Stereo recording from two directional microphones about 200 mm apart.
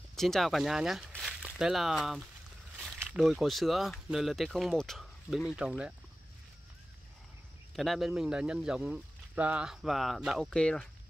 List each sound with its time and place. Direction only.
0.1 s speech: centre (ahead or behind)
7.7 s speech: centre (ahead or behind)